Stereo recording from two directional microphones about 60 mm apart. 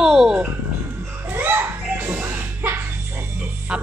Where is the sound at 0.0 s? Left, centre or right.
Centre.